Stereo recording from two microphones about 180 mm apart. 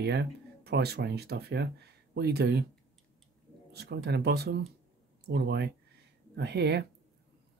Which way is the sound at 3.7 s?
65° right (ahead or behind).